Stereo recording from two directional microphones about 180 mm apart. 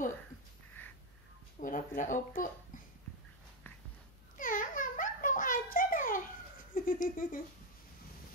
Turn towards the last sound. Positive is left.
turn(degrees=50)  # may be behind; listen again after turning